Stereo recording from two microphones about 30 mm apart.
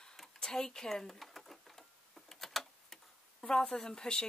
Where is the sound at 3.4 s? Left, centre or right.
Left.